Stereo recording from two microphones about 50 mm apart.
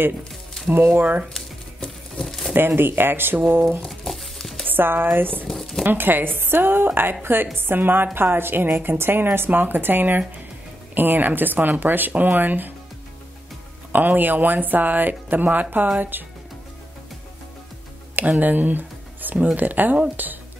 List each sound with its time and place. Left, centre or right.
0.7 s a woman's voice: right
1.3 s a sound: centre
2.5 s a woman's voice: right
3.8 s a sound: centre
4.6 s a woman's voice: right
5.5 s a sound: centre
5.9 s a woman's voice: right
13.9 s speech: right
18.4 s music: right
19.3 s speech: right